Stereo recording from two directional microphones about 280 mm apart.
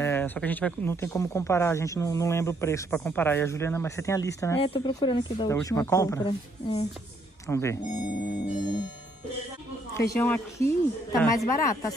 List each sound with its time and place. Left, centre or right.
0.0 s speech: centre
7.9 s music: left
9.9 s speech: centre